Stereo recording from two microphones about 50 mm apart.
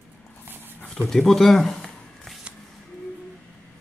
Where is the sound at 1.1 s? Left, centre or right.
Centre.